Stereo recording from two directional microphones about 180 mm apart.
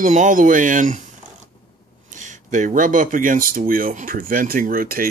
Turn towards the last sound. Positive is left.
turn(degrees=-55)  # may be behind; listen again after turning